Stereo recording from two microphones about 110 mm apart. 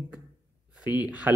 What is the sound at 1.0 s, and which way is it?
Speech, 10° right (ahead or behind).